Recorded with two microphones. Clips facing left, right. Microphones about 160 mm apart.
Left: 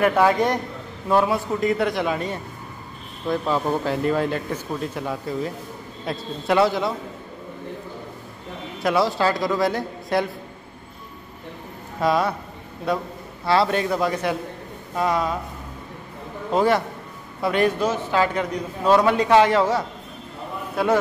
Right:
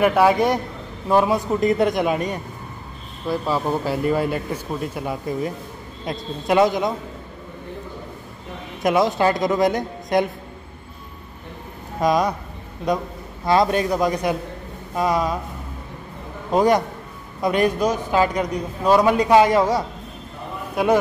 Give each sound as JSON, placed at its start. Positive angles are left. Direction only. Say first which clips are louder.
{"t": 0.0, "sound": "a man's voice", "louder": "right 2 dB", "side_deg": -10}
{"t": 8.8, "sound": "a man's voice", "louder": "right 2 dB", "side_deg": -20}
{"t": 12.0, "sound": "a man's voice", "louder": "right 2 dB", "side_deg": -15}
{"t": 16.5, "sound": "a man's voice", "louder": "right 2 dB", "side_deg": -15}